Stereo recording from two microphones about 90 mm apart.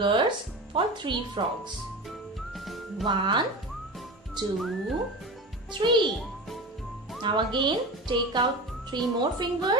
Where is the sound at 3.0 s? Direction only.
60° right (ahead or behind).